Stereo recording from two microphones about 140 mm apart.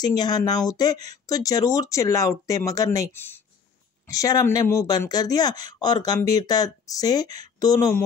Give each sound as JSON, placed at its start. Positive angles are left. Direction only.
{"t": 0.0, "sound": "speech", "side_deg": 30}